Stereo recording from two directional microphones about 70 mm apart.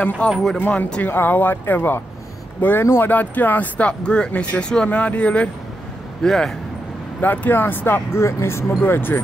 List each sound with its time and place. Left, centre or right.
0.3 s speech: centre
0.6 s speech: left
1.1 s speech: left
3.1 s speech: left
6.2 s speech: centre
7.2 s speech: left